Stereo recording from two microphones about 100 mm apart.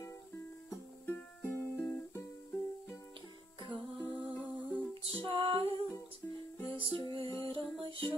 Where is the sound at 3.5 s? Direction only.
55° right (ahead or behind).